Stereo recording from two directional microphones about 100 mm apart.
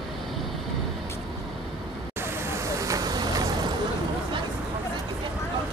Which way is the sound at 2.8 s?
35° right (ahead or behind).